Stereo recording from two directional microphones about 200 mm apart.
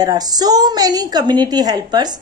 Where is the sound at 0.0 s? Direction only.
20° right (ahead or behind).